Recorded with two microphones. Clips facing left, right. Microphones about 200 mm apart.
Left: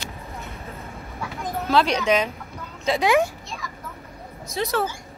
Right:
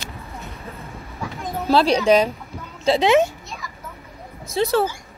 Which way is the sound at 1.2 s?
Centre (ahead or behind).